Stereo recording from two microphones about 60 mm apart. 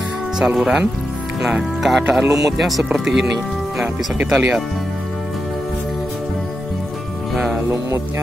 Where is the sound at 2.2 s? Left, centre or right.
Right.